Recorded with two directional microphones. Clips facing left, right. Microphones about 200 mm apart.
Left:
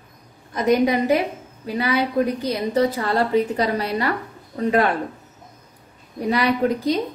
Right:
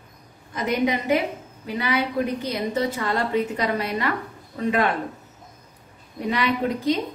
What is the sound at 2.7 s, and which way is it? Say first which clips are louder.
A woman's voice: left 6 dB; 35° left (ahead or behind).